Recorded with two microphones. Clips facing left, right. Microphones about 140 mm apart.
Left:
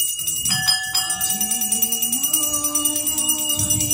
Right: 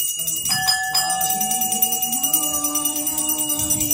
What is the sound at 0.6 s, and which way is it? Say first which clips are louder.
Jingle bell: right 7 dB; 45° right (ahead or behind).